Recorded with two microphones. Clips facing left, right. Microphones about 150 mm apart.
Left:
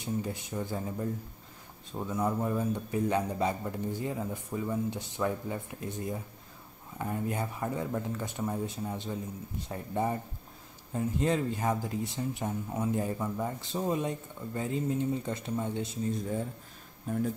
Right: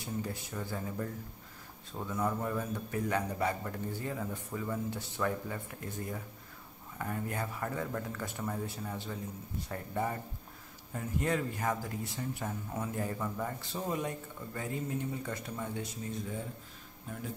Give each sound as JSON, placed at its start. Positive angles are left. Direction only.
{"t": 0.0, "sound": "speech", "side_deg": 20}